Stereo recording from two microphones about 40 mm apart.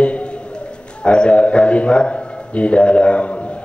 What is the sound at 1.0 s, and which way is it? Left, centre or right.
A man's voice, left.